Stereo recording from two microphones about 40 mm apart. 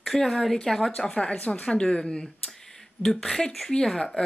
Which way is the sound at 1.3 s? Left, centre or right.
Left.